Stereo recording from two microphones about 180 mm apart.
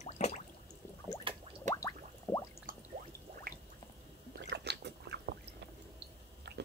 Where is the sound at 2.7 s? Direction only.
50° right (ahead or behind).